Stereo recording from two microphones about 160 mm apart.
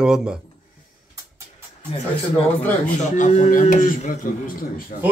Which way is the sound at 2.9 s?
50° left (ahead or behind).